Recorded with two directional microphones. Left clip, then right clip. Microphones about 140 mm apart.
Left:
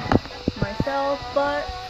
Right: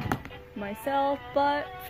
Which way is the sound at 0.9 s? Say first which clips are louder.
Left 2 dB; 30° right (ahead or behind).